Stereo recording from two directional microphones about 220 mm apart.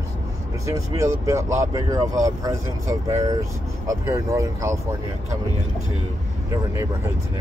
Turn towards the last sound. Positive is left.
turn(degrees=-15)  # may be behind; listen again after turning